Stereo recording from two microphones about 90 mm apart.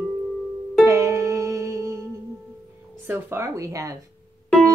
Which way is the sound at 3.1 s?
30° right (ahead or behind).